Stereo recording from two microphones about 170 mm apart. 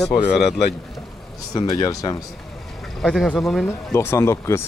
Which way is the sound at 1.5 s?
20° left (ahead or behind).